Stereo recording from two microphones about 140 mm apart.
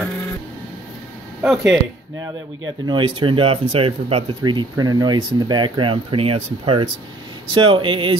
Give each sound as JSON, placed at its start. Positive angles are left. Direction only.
{"t": 1.4, "sound": "speech", "side_deg": -5}
{"t": 2.8, "sound": "speech", "side_deg": -35}
{"t": 4.4, "sound": "speech", "side_deg": -30}